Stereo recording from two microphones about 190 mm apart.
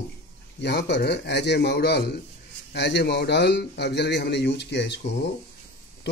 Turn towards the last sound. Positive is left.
turn(degrees=65)  # may be behind; listen again after turning